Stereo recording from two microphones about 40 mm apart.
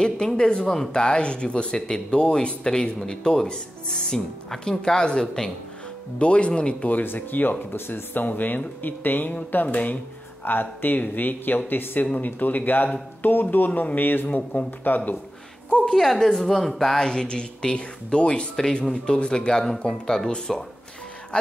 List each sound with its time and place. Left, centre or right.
0.0 s speech: centre
6.1 s speech: left
7.0 s speech: left
14.8 s speech: left
15.8 s speech: centre
17.0 s speech: centre